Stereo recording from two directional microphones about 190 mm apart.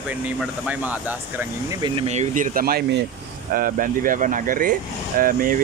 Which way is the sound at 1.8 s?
30° right (ahead or behind).